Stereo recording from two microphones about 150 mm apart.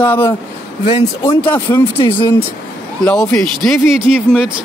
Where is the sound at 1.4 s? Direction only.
10° left (ahead or behind).